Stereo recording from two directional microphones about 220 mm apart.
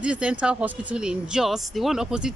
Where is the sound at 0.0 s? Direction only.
5° right (ahead or behind).